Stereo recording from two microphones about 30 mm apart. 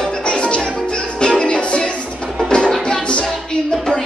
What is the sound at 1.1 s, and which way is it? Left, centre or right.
Music, left.